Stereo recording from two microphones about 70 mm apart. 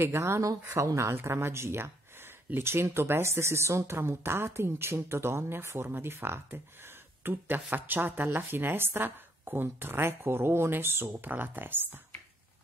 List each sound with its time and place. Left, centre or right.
0.0 s speech: right
0.4 s speech: right